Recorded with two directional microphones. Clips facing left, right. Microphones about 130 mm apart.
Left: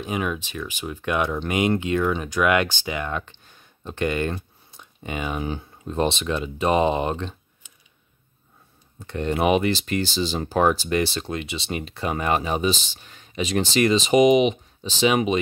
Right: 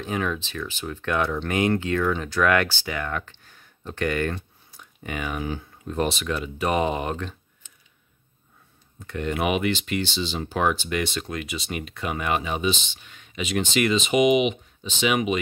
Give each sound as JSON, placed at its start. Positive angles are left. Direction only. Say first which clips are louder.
{"t": 0.0, "sound": "speech", "louder": "left 1 dB", "side_deg": 15}
{"t": 9.0, "sound": "speech", "louder": "left 3 dB", "side_deg": 30}